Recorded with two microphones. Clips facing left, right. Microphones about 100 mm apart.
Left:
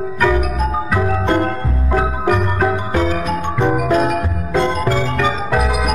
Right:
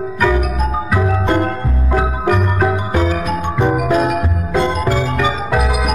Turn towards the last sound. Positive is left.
turn(degrees=-5)  # may be behind; listen again after turning